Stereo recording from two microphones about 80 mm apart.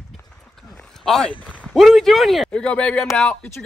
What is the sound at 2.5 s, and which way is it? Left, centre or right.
Speech, centre.